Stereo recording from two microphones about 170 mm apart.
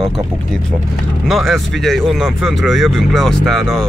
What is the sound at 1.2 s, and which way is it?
Speech, centre (ahead or behind).